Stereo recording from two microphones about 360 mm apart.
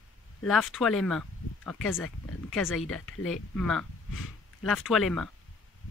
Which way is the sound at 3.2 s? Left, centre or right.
Centre.